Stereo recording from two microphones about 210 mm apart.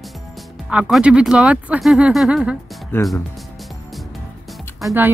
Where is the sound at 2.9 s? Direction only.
10° left (ahead or behind).